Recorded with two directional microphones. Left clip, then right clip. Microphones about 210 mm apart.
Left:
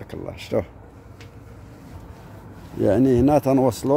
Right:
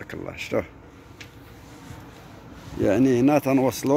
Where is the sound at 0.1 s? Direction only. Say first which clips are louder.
Left 2 dB; 10° left (ahead or behind).